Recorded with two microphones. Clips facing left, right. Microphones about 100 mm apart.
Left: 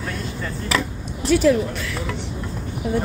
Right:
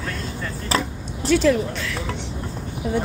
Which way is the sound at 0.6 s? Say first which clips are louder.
Even; 35° right (ahead or behind).